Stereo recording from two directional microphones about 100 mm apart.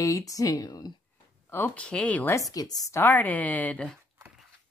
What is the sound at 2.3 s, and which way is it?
Speech, 35° left (ahead or behind).